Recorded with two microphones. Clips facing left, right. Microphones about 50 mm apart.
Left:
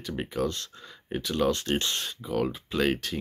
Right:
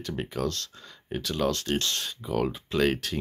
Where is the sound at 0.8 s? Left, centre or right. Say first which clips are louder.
Left 1 dB; centre.